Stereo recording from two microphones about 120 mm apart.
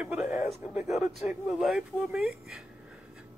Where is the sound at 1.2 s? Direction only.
Centre (ahead or behind).